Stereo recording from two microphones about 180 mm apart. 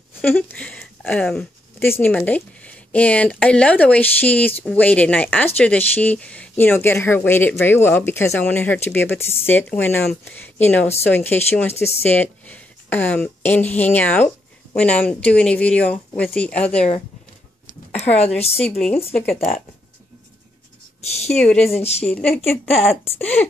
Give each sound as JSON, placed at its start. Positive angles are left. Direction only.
{"t": 0.2, "sound": "speech", "side_deg": 10}
{"t": 17.9, "sound": "speech", "side_deg": 35}
{"t": 18.8, "sound": "speech", "side_deg": 5}
{"t": 19.3, "sound": "speech", "side_deg": 45}
{"t": 21.0, "sound": "speech", "side_deg": 35}
{"t": 21.4, "sound": "speech", "side_deg": 5}